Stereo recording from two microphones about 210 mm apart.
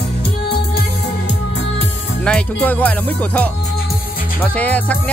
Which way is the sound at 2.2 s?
5° left (ahead or behind).